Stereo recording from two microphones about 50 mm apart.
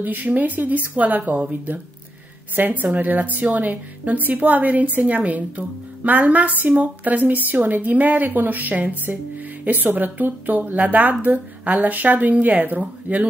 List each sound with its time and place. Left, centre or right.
0.0 s speech: right
2.5 s speech: right